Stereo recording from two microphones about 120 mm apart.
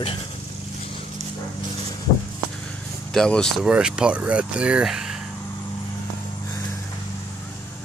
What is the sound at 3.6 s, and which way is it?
Speech, 5° right (ahead or behind).